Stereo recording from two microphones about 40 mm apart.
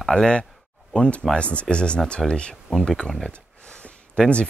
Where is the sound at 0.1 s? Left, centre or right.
Centre.